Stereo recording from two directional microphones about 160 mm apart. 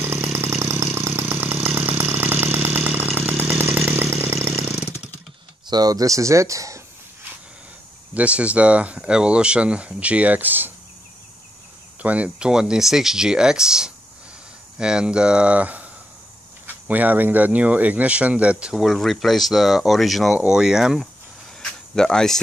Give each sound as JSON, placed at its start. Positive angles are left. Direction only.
{"t": 0.0, "sound": "chainsaw", "side_deg": -15}
{"t": 5.7, "sound": "speech", "side_deg": -25}
{"t": 8.1, "sound": "speech", "side_deg": -10}
{"t": 12.0, "sound": "speech", "side_deg": -10}
{"t": 21.5, "sound": "cricket", "side_deg": 5}